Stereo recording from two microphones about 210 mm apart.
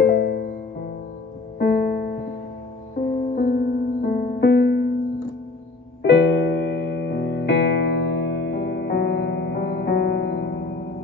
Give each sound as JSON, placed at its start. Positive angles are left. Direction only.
{"t": 0.0, "sound": "music", "side_deg": 50}
{"t": 1.6, "sound": "music", "side_deg": 50}
{"t": 3.3, "sound": "music", "side_deg": 45}
{"t": 6.0, "sound": "music", "side_deg": 60}